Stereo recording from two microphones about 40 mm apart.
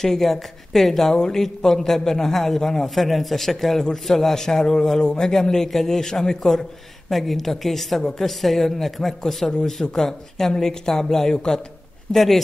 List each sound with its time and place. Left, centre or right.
0.0 s a man's voice: centre
1.1 s a man's voice: centre
12.1 s a woman's voice: centre